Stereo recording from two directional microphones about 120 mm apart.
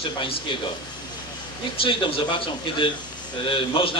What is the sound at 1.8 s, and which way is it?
A man's voice, 45° left (ahead or behind).